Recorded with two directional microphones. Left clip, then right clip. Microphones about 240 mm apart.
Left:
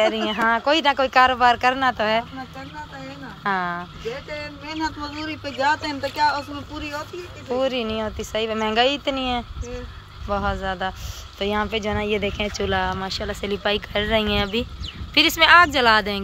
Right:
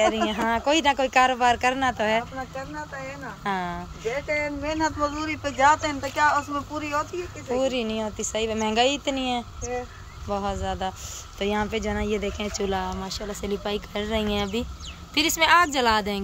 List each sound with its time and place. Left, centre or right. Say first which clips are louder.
0.0 s speech: left 3 dB; centre
3.4 s speech: left 5 dB; centre
4.6 s speech: even; centre
7.5 s speech: left 2 dB; centre